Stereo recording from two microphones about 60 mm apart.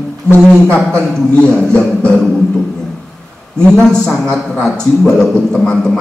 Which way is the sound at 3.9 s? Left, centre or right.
Centre.